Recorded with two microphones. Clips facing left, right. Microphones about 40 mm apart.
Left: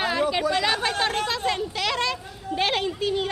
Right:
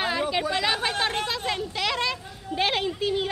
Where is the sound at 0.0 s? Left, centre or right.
Centre.